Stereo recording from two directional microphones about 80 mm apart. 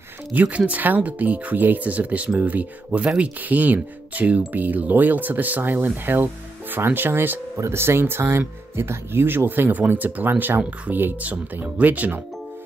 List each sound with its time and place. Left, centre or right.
0.3 s speech: centre